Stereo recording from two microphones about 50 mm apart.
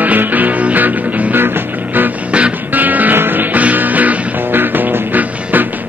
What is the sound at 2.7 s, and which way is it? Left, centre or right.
Music, right.